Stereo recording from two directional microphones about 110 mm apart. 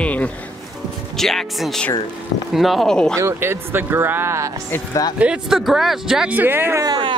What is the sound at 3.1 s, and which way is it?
Speech, 25° right (ahead or behind).